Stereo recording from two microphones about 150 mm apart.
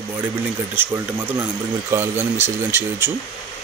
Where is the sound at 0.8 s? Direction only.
15° right (ahead or behind).